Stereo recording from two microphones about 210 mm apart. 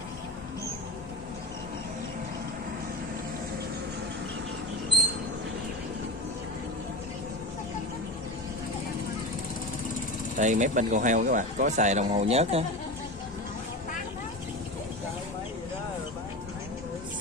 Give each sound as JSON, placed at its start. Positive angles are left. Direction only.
{"t": 10.3, "sound": "speech", "side_deg": -35}